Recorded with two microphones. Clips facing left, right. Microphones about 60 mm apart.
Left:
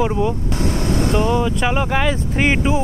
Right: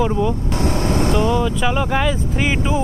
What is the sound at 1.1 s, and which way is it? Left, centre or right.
Speech, left.